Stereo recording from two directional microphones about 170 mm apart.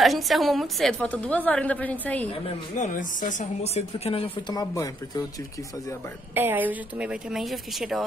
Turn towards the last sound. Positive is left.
turn(degrees=0)  # may be behind; listen again after turning